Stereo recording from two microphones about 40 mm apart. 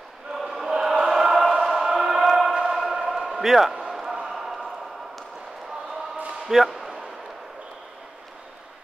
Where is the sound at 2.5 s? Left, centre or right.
Right.